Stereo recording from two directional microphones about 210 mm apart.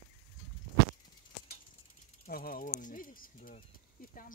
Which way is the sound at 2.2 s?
45° left (ahead or behind).